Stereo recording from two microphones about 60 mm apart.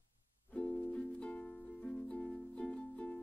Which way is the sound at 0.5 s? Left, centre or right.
Left.